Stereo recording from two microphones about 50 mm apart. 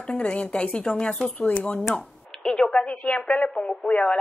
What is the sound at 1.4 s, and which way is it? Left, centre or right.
Speech, left.